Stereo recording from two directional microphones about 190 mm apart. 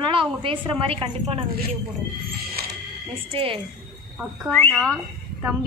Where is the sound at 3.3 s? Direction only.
30° right (ahead or behind).